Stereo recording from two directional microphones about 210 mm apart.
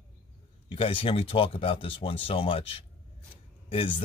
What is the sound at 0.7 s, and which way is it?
Speech, 25° left (ahead or behind).